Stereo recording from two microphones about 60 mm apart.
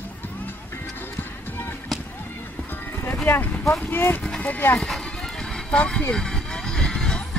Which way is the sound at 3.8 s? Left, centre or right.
Left.